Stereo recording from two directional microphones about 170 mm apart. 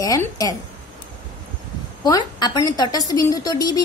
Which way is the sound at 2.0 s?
25° left (ahead or behind).